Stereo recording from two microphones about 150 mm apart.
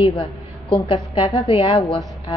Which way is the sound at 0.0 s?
35° left (ahead or behind).